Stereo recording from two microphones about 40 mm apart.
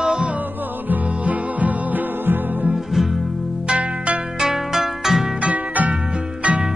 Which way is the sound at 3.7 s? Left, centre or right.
Right.